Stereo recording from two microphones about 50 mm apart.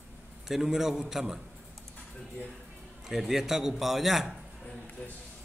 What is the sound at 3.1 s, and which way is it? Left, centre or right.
A man's voice, centre.